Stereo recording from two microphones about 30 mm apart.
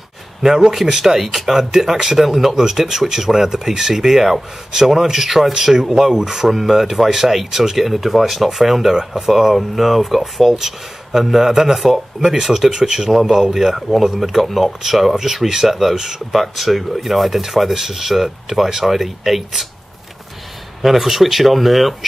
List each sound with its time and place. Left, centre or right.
0.4 s speech: centre
12.7 s speech: right
13.1 s speech: centre
16.3 s speech: centre
20.8 s speech: centre